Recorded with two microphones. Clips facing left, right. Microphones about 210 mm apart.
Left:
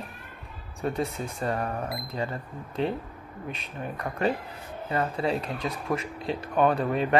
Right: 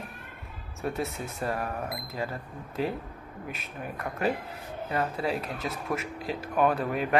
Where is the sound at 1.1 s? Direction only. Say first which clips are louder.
Left 2 dB; 30° left (ahead or behind).